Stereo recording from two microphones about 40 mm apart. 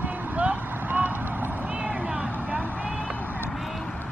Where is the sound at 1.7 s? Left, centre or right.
Right.